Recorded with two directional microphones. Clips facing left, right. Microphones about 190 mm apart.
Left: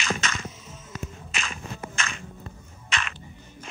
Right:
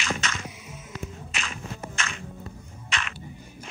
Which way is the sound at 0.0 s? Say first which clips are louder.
Left 1 dB; 40° left (ahead or behind).